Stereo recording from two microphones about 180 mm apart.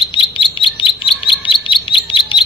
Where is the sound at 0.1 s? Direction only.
25° left (ahead or behind).